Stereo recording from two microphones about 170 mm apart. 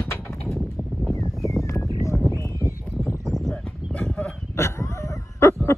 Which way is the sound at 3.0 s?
15° right (ahead or behind).